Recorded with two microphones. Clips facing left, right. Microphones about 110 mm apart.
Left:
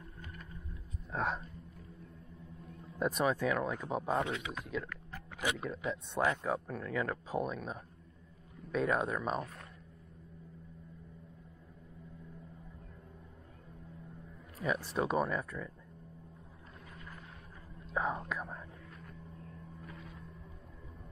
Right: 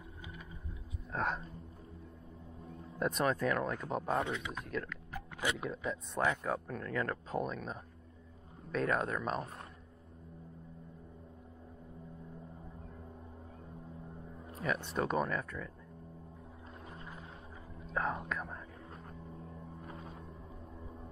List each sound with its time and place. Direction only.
0.2 s vehicle: 10° right (ahead or behind)
1.1 s speech: centre (ahead or behind)
3.0 s speech: centre (ahead or behind)
14.6 s speech: centre (ahead or behind)
16.9 s vehicle: 25° right (ahead or behind)
17.8 s speech: centre (ahead or behind)
18.9 s vehicle: 35° right (ahead or behind)
19.3 s vehicle: 10° right (ahead or behind)
19.8 s vehicle: 30° right (ahead or behind)